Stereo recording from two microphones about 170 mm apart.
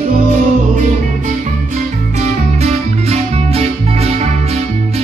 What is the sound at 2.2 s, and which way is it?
Music, 40° right (ahead or behind).